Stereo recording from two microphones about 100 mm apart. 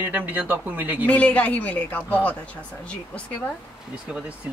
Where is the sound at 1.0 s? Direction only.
15° left (ahead or behind).